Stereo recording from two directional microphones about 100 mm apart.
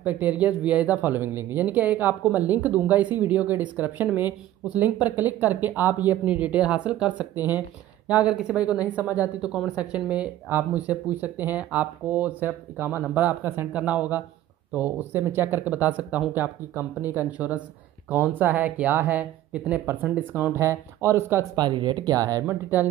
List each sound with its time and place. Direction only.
0.0 s speech: 15° right (ahead or behind)
21.5 s speech: 50° right (ahead or behind)
22.5 s speech: 20° right (ahead or behind)